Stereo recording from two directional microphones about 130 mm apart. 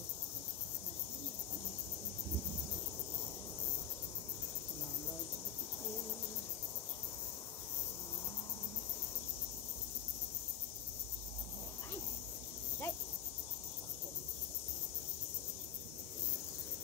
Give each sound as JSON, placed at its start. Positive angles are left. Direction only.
{"t": 12.8, "sound": "cricket", "side_deg": 15}